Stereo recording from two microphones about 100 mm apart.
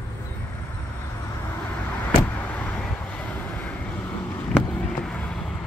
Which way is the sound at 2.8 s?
10° left (ahead or behind).